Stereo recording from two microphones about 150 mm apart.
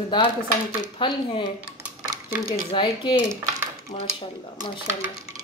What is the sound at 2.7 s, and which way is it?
Speech, 35° left (ahead or behind).